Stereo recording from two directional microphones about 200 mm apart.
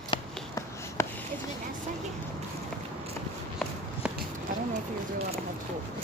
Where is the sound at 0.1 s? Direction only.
15° left (ahead or behind).